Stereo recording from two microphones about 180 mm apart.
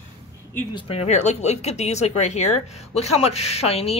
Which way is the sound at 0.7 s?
35° left (ahead or behind).